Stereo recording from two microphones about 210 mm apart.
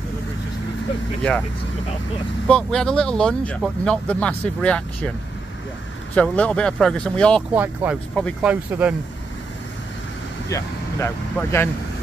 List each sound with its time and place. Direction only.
2.4 s speech: 5° left (ahead or behind)
6.1 s speech: 5° left (ahead or behind)
7.5 s speech: 10° right (ahead or behind)
8.2 s speech: 5° left (ahead or behind)
8.5 s speech: 5° right (ahead or behind)
10.5 s speech: 15° left (ahead or behind)